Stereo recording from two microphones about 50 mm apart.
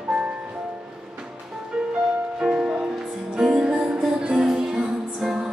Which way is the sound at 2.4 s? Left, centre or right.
Centre.